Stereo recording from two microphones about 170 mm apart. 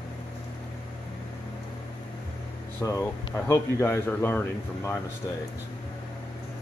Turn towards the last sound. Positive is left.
turn(degrees=15)  # may be behind; listen again after turning